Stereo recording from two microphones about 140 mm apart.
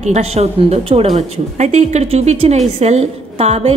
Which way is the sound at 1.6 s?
55° right (ahead or behind).